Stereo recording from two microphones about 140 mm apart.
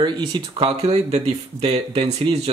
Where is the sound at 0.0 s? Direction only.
35° right (ahead or behind).